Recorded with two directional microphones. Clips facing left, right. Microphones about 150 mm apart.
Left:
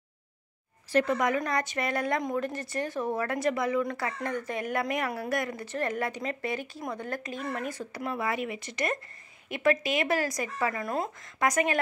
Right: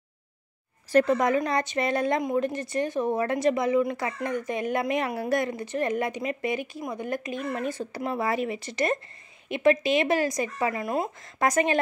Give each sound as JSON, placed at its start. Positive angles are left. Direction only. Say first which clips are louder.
{"t": 1.0, "sound": "speech", "louder": "right 4 dB", "side_deg": -30}
{"t": 11.3, "sound": "speech", "louder": "right 3 dB", "side_deg": -30}